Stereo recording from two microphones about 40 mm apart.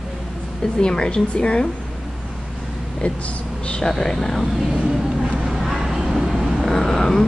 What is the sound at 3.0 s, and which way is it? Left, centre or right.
Speech, left.